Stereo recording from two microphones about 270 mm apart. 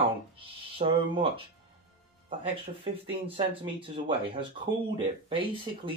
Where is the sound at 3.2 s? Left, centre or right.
Centre.